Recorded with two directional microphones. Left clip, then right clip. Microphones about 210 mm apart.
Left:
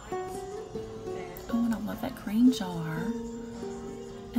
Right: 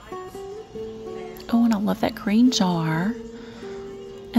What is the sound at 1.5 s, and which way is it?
Speech, 50° right (ahead or behind).